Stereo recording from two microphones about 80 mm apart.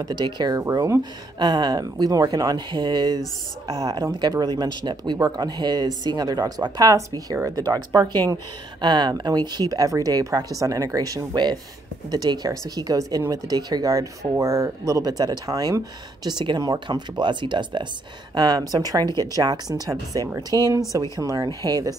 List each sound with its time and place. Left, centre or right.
0.0 s speech: right
2.7 s speech: right
4.2 s speech: right
8.8 s speech: right
12.1 s speech: right
16.3 s speech: right
16.8 s speech: right
18.3 s speech: right
20.5 s speech: left
21.2 s speech: right